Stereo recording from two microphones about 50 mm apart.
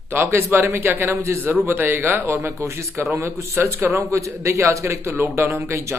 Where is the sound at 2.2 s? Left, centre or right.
Right.